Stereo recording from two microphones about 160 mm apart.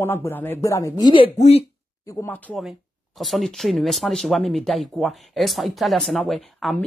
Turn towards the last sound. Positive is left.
turn(degrees=0)  # may be behind; listen again after turning